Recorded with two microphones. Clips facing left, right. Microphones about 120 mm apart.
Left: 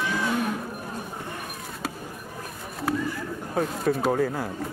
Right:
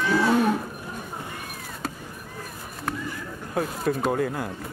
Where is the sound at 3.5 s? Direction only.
Centre (ahead or behind).